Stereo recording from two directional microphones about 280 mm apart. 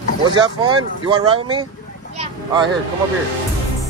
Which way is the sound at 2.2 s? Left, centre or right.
Centre.